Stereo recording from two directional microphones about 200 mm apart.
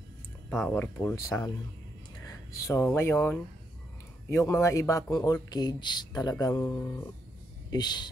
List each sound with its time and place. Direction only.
0.5 s speech: 5° left (ahead or behind)